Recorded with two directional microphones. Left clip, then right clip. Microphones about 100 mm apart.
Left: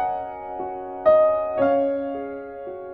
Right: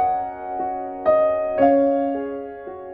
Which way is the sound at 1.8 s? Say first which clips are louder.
Right 4 dB; 15° right (ahead or behind).